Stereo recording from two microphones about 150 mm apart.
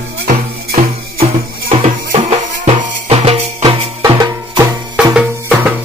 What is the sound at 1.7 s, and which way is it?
Music, 40° right (ahead or behind).